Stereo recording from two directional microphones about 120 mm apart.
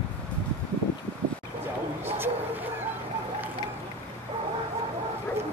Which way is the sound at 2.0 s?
20° right (ahead or behind).